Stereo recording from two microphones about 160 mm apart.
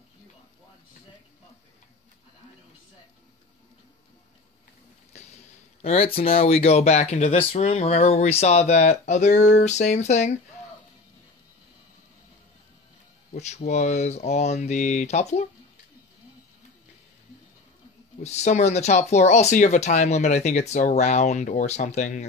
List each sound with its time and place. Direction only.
5.1 s a sound: 45° left (ahead or behind)
5.8 s speech: 40° left (ahead or behind)
13.3 s speech: 45° left (ahead or behind)
18.2 s speech: 45° left (ahead or behind)